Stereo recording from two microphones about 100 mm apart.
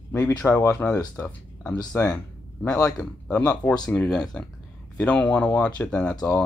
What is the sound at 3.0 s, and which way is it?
Speech, 15° left (ahead or behind).